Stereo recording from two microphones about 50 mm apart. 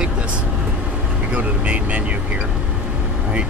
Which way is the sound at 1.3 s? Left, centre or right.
Right.